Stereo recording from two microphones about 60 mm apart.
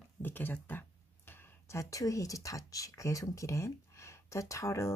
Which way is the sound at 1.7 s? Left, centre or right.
Left.